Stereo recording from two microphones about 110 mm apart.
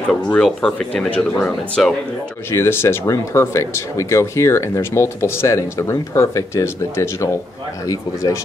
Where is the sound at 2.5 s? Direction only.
20° left (ahead or behind).